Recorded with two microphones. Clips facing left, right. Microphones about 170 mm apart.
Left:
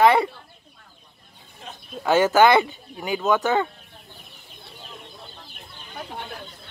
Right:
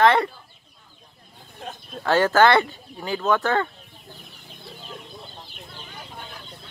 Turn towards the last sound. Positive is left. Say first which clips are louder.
# right 3 dB
turn(degrees=0)  # may be behind; listen again after turning